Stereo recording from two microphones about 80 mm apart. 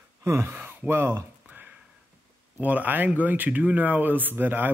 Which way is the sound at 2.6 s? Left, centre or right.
Right.